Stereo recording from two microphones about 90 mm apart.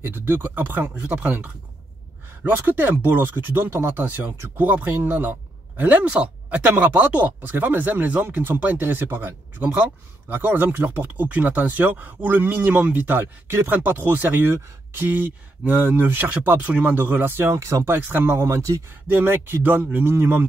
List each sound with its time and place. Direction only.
0.0 s speech: 25° right (ahead or behind)
17.9 s speech: 20° right (ahead or behind)